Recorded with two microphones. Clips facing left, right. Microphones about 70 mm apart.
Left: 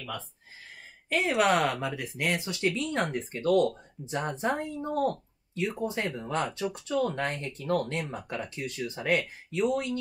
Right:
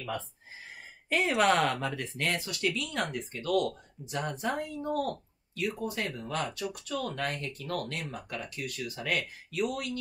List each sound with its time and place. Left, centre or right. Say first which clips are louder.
1.0 s speech: left 1 dB; centre; by 9.9 s left